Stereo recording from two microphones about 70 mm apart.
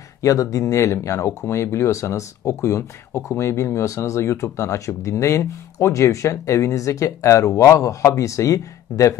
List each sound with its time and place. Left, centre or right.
0.2 s speech: left